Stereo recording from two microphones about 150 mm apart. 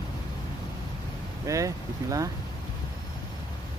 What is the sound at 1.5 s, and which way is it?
Speech, 20° right (ahead or behind).